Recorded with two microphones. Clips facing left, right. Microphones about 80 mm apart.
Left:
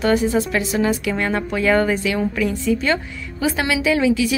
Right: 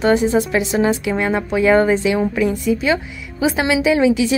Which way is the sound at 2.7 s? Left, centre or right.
Centre.